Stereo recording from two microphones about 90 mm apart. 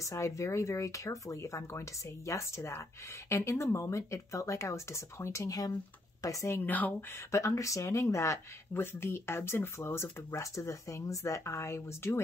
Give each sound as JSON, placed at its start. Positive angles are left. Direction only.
{"t": 0.0, "sound": "speech", "side_deg": 35}